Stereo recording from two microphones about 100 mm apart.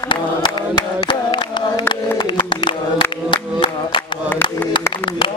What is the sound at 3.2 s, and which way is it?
Music, 60° left (ahead or behind).